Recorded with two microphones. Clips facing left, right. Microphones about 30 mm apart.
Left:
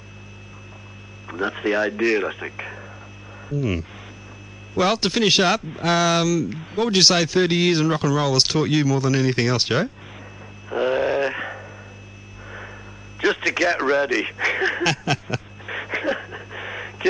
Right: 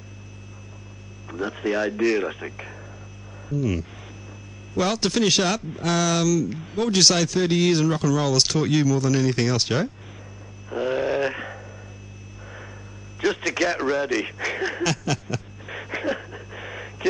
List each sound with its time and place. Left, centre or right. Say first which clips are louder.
1.2 s speech: left 3 dB; left
10.7 s grunt: left 3 dB; centre
11.4 s radio: left 4 dB; centre
12.4 s a sound: left 5 dB; centre
13.6 s radio: left 4 dB; centre